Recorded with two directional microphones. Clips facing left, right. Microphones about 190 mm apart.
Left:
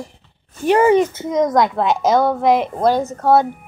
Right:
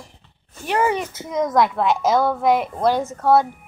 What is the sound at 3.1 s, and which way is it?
Speech, 25° left (ahead or behind).